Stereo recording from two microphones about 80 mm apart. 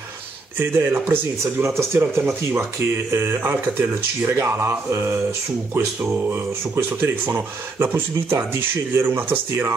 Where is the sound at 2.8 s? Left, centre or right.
Right.